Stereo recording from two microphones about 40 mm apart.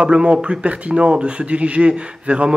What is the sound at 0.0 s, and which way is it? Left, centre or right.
Speech, right.